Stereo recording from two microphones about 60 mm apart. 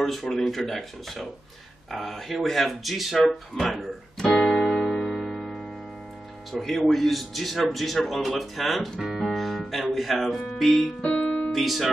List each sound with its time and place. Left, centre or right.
0.0 s speech: centre
3.2 s speech: centre
4.2 s music: centre
6.5 s speech: centre
11.0 s keyboard: centre
11.5 s speech: centre